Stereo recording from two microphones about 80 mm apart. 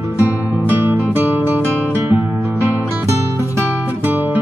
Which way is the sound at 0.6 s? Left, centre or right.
Right.